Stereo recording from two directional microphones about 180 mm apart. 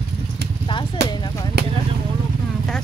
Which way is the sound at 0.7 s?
25° left (ahead or behind).